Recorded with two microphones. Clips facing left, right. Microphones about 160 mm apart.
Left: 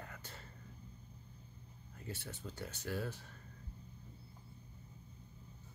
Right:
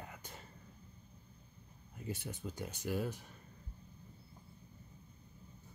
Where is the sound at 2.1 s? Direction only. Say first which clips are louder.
Right 4 dB; 15° right (ahead or behind).